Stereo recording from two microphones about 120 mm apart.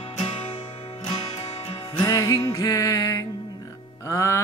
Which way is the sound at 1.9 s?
30° left (ahead or behind).